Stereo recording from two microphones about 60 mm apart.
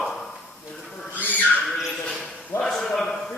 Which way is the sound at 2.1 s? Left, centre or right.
Centre.